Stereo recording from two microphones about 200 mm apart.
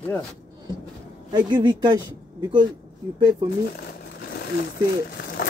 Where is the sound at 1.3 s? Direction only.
20° right (ahead or behind).